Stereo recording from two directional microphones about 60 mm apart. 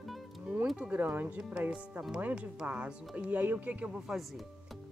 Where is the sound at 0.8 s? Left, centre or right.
Right.